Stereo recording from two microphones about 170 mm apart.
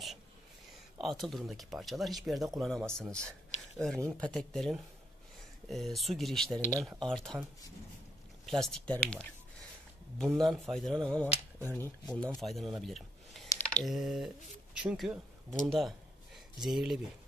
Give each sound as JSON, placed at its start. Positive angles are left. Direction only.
{"t": 0.9, "sound": "speech", "side_deg": 0}
{"t": 3.3, "sound": "a sound", "side_deg": 5}
{"t": 4.2, "sound": "speech", "side_deg": 5}
{"t": 8.5, "sound": "speech", "side_deg": 0}